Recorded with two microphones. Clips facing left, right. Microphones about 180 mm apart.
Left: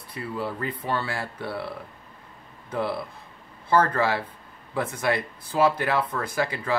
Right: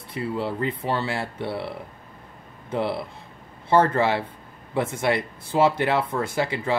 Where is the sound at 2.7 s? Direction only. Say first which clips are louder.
Right 2 dB; 25° right (ahead or behind).